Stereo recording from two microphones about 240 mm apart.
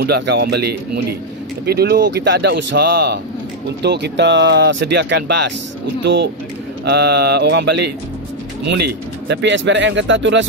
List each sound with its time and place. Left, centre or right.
0.0 s speech: right